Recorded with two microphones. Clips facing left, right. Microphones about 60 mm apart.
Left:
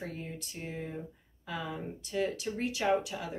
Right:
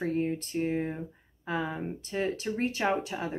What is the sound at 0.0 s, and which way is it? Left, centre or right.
A woman's voice, right.